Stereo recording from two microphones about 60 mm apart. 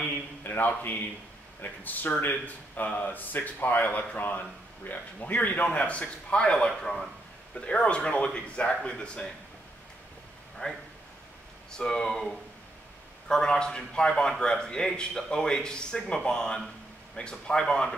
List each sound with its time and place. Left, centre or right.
0.1 s a man's voice: left; by 7.1 s centre
7.6 s speech: centre
10.6 s speech: centre